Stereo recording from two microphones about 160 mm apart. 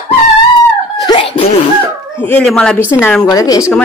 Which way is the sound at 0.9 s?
30° left (ahead or behind).